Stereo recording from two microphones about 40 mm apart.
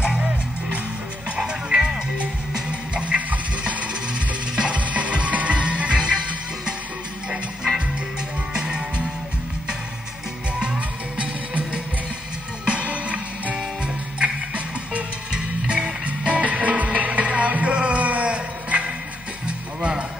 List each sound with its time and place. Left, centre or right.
0.1 s music: right
5.9 s music: right
7.2 s music: centre
8.5 s music: right
10.6 s music: right
15.3 s music: right